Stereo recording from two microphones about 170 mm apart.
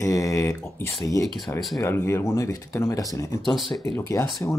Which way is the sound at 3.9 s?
15° left (ahead or behind).